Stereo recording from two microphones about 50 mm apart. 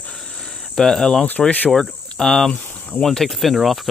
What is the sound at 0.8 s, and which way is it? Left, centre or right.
Speech, centre.